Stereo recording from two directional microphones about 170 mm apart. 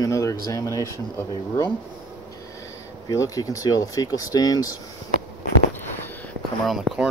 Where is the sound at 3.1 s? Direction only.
20° left (ahead or behind).